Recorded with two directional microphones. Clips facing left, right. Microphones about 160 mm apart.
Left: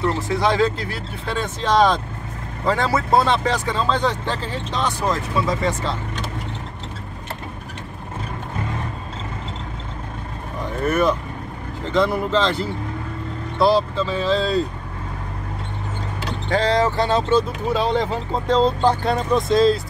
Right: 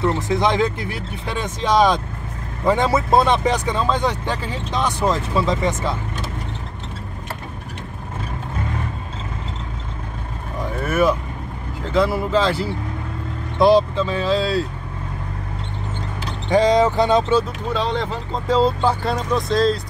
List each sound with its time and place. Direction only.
0.0 s speech: 20° right (ahead or behind)
10.8 s speech: 5° right (ahead or behind)
16.4 s speech: 15° right (ahead or behind)
17.6 s speech: 10° left (ahead or behind)
18.5 s speech: 5° right (ahead or behind)